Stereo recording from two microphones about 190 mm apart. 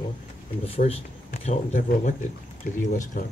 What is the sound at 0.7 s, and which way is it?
Speech, 30° left (ahead or behind).